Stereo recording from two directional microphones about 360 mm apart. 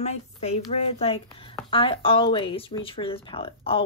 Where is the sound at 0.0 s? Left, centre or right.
Centre.